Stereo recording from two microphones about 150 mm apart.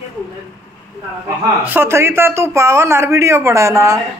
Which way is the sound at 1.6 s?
15° right (ahead or behind).